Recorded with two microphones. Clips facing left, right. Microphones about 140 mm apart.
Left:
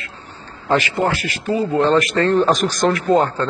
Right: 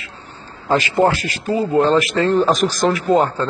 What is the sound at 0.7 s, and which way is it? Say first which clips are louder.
A man's voice: right 2 dB; 30° right (ahead or behind).